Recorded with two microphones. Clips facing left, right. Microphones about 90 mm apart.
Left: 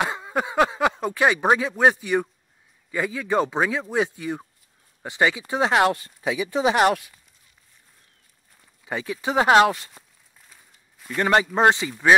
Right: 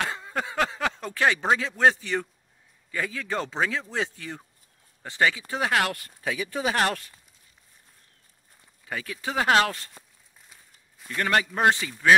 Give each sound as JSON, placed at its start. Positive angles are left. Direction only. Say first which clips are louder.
{"t": 0.0, "sound": "speech", "louder": "left 5 dB", "side_deg": 15}
{"t": 8.8, "sound": "speech", "louder": "left 5 dB", "side_deg": 20}
{"t": 10.5, "sound": "walk", "louder": "left 1 dB", "side_deg": 0}
{"t": 11.1, "sound": "speech", "louder": "left 5 dB", "side_deg": 20}